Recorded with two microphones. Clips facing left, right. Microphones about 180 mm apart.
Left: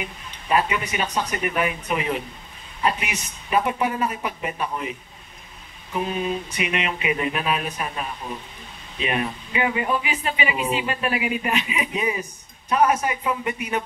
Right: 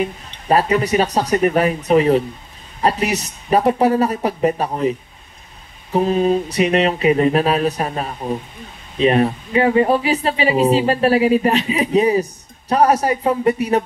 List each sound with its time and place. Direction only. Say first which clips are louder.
0.0 s speech: right 11 dB; 35° right (ahead or behind)